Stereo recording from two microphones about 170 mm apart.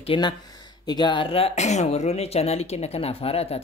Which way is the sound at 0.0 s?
30° left (ahead or behind).